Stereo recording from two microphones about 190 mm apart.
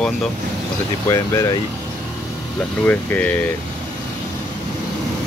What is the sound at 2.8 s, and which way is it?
Speech, 10° left (ahead or behind).